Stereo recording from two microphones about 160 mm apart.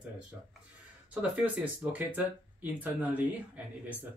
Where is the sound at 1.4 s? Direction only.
10° right (ahead or behind).